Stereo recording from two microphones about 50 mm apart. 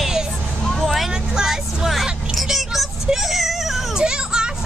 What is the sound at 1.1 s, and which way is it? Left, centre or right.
Vehicle, centre.